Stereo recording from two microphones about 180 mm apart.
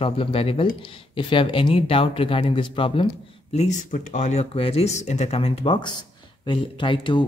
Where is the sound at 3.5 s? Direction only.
40° left (ahead or behind).